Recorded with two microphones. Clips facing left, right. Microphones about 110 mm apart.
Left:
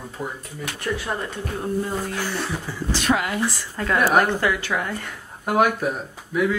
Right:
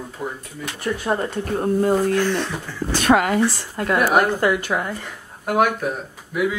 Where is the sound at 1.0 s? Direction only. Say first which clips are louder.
Right 6 dB; 35° right (ahead or behind).